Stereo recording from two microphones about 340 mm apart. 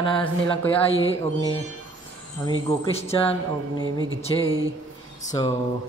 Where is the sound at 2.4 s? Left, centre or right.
Centre.